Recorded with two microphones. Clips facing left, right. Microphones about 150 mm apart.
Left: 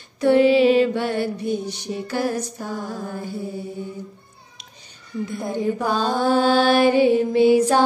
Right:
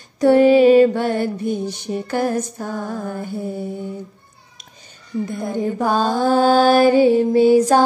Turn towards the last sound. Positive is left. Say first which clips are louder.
# right 3 dB
turn(degrees=-40)  # may be behind; listen again after turning